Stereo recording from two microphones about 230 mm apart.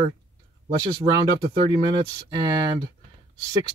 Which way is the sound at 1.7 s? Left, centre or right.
Centre.